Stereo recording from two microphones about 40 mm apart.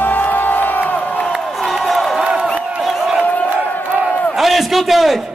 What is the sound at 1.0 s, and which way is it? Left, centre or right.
Crowd, left.